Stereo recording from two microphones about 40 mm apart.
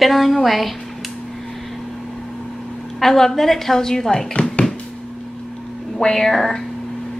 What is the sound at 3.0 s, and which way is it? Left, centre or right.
A woman's voice, centre.